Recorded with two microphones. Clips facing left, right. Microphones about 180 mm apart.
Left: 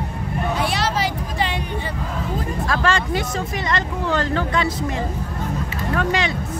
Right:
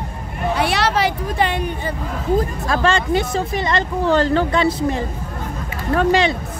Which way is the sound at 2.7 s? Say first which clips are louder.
Right 4 dB; 25° right (ahead or behind).